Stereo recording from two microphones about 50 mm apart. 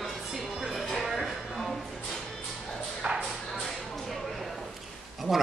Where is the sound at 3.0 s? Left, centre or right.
Centre.